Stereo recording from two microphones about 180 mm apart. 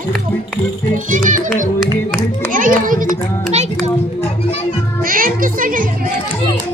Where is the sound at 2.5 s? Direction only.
50° right (ahead or behind).